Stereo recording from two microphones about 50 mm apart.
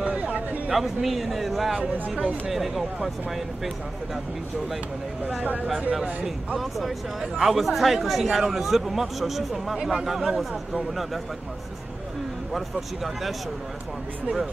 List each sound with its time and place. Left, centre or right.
0.0 s a sound: right
0.7 s speech: centre
1.8 s speech: right
2.5 s speech: centre
6.6 s speech: centre
12.5 s speech: centre